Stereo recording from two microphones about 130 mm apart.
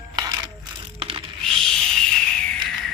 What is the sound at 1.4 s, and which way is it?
Music, 5° left (ahead or behind).